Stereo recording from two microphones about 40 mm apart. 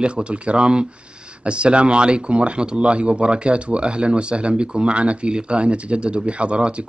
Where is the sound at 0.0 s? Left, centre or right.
Right.